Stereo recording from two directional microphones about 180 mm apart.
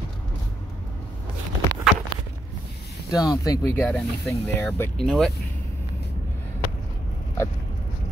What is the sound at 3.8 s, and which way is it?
Speech, 5° left (ahead or behind).